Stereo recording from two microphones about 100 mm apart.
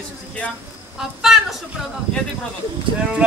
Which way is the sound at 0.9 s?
5° right (ahead or behind).